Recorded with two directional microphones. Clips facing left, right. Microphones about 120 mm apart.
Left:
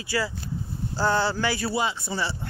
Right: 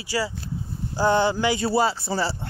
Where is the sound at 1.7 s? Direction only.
40° right (ahead or behind).